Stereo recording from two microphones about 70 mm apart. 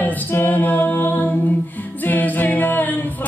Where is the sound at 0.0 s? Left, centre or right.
Left.